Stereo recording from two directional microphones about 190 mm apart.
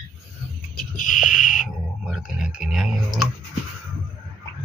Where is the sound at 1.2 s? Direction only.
45° left (ahead or behind).